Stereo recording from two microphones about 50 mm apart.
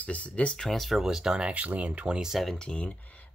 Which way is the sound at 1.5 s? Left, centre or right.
Right.